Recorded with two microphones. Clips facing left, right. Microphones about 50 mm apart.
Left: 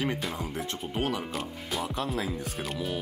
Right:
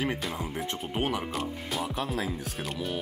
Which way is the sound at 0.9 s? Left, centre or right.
Right.